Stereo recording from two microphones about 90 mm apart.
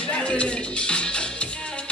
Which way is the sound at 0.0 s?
10° left (ahead or behind).